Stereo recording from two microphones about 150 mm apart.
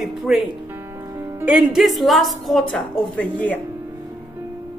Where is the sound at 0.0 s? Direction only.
Centre (ahead or behind).